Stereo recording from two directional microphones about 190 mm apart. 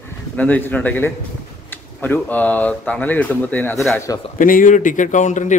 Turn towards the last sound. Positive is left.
turn(degrees=40)  # may be behind; listen again after turning